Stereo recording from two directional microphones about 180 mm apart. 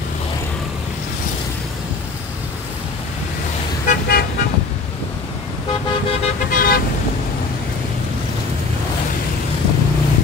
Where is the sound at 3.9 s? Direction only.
55° left (ahead or behind).